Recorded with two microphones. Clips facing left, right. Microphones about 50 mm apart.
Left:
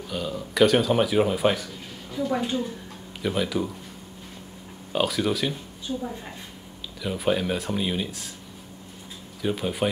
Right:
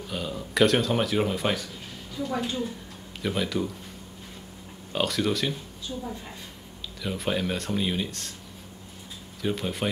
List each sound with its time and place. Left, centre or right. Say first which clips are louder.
0.1 s speech: left 1 dB; centre
2.1 s a woman's voice: left 4 dB; centre
3.2 s speech: left 2 dB; centre
4.9 s speech: left 2 dB; centre
7.0 s speech: left 4 dB; centre
9.4 s speech: left 3 dB; centre